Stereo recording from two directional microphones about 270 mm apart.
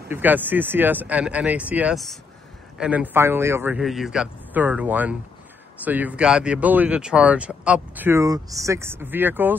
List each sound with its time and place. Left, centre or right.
0.1 s a man's voice: centre